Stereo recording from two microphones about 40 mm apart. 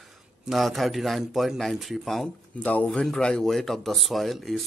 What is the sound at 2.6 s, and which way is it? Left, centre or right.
Speech, left.